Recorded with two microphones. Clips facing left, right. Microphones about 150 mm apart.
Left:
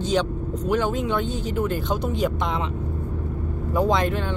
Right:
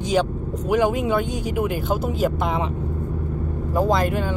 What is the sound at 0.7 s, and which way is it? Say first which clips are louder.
Speech: right 4 dB; 10° right (ahead or behind).